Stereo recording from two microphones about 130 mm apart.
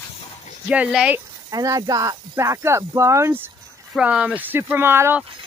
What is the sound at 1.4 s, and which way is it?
Speech, 25° right (ahead or behind).